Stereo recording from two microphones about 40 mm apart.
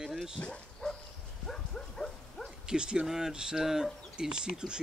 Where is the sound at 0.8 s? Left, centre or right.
Centre.